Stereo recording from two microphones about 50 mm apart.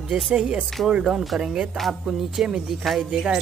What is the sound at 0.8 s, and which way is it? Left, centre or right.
Music, centre.